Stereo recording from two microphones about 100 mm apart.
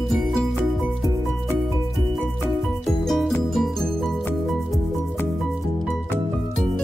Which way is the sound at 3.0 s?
Centre (ahead or behind).